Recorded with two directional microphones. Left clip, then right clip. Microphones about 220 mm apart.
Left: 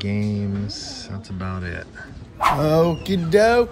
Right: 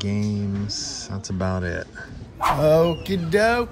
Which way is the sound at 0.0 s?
15° right (ahead or behind).